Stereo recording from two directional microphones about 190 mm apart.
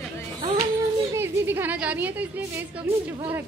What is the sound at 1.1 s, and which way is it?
A woman's voice, 10° right (ahead or behind).